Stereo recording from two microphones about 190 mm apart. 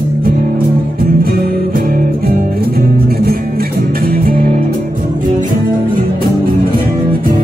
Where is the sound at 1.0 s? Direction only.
50° right (ahead or behind).